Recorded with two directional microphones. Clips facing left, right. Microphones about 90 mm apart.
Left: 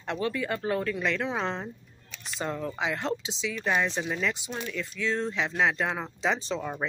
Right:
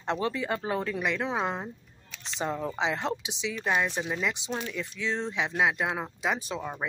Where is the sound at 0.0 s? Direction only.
25° right (ahead or behind).